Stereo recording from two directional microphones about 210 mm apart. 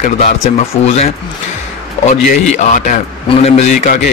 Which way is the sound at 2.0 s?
35° left (ahead or behind).